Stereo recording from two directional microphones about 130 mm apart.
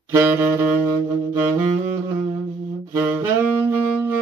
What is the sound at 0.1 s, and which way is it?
Saxophone, 15° right (ahead or behind).